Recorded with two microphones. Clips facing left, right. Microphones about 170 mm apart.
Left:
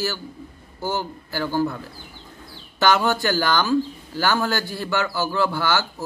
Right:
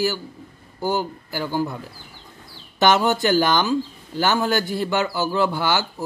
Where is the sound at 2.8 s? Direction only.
20° right (ahead or behind).